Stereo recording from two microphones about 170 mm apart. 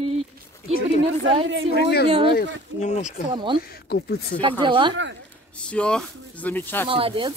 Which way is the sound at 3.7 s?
70° left (ahead or behind).